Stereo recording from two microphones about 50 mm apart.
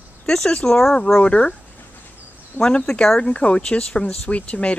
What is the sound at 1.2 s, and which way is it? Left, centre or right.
Speech, left.